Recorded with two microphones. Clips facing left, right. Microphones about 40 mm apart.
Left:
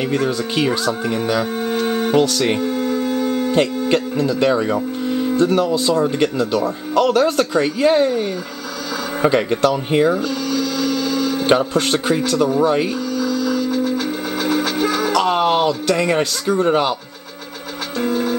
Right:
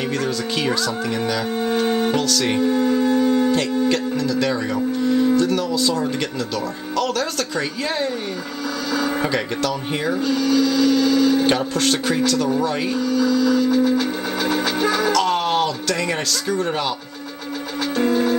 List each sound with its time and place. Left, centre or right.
0.0 s speech: centre
1.5 s music: centre
2.1 s speech: centre
2.6 s a sound: centre
3.9 s speech: left
9.2 s speech: centre
10.2 s printer: centre
11.4 s speech: centre
12.8 s music: centre
15.1 s speech: centre
17.9 s music: centre